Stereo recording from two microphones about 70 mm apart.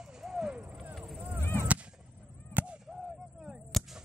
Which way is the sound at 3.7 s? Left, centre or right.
Centre.